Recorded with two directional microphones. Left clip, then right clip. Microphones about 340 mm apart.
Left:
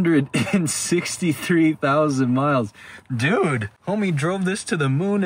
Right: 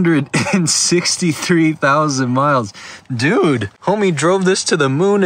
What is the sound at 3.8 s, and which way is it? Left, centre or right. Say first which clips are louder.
Speech: right 11 dB; right.